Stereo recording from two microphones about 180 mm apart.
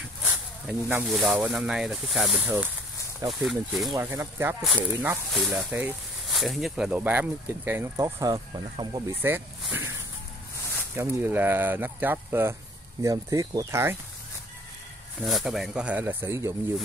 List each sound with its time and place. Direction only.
0.0 s speech: 5° right (ahead or behind)
3.9 s speech: 15° right (ahead or behind)
5.3 s speech: centre (ahead or behind)
5.6 s speech: 10° right (ahead or behind)
11.0 s speech: 10° right (ahead or behind)
15.2 s speech: centre (ahead or behind)